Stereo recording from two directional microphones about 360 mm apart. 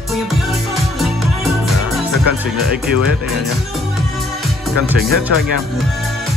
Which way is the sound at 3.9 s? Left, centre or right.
Centre.